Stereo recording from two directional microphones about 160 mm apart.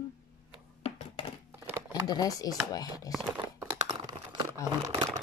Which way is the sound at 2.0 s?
25° left (ahead or behind).